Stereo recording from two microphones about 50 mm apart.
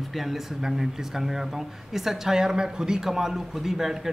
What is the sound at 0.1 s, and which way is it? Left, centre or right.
A man's voice, centre.